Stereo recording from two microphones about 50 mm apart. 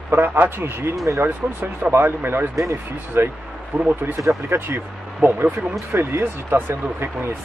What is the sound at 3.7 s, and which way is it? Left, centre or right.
Speech, right.